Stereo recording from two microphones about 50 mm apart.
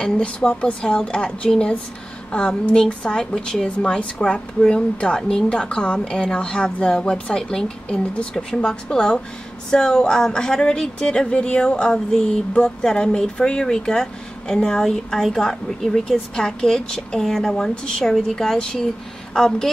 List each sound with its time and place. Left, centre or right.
0.0 s a woman's voice: centre